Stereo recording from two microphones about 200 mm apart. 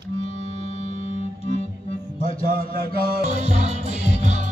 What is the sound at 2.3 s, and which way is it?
Music, 30° left (ahead or behind).